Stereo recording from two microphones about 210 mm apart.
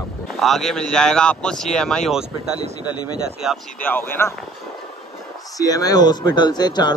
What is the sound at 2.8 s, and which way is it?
Speech, 20° left (ahead or behind).